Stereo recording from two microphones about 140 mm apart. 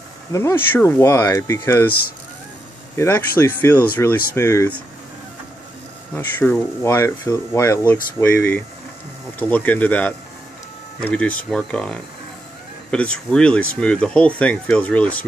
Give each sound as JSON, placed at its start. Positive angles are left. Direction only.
{"t": 0.3, "sound": "speech", "side_deg": 20}
{"t": 3.0, "sound": "speech", "side_deg": 15}
{"t": 6.1, "sound": "speech", "side_deg": 15}